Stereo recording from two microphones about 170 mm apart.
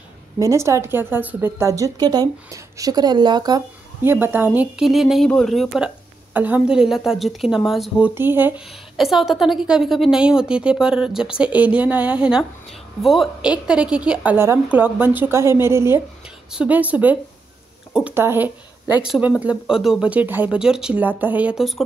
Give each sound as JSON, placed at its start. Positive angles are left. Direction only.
{"t": 0.4, "sound": "a woman's voice", "side_deg": -20}
{"t": 4.0, "sound": "a woman's voice", "side_deg": -15}
{"t": 6.3, "sound": "a woman's voice", "side_deg": -10}
{"t": 8.1, "sound": "a woman's voice", "side_deg": -10}
{"t": 18.9, "sound": "speech", "side_deg": 25}
{"t": 19.1, "sound": "a woman's voice", "side_deg": -5}